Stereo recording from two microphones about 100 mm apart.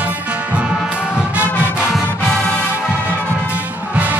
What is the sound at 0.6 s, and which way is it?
Music, 10° right (ahead or behind).